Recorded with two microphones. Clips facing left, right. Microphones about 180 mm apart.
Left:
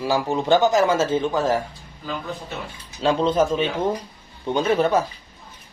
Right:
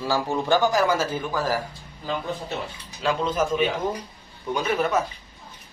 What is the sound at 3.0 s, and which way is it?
A man's voice, 30° left (ahead or behind).